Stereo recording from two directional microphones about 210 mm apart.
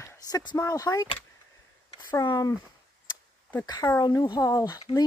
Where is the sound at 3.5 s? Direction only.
15° left (ahead or behind).